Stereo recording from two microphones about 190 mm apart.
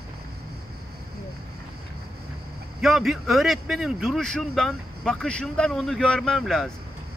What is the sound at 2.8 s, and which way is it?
Speech, centre (ahead or behind).